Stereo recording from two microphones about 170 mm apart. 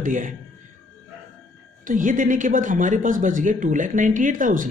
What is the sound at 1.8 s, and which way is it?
Speech, 50° right (ahead or behind).